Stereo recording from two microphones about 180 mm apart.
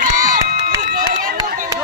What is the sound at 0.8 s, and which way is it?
Run, 50° right (ahead or behind).